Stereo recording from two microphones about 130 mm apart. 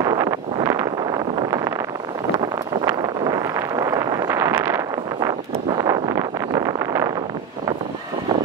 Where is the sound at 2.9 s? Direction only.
30° right (ahead or behind).